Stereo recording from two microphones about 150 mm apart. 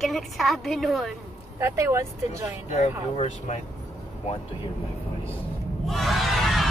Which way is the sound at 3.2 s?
50° left (ahead or behind).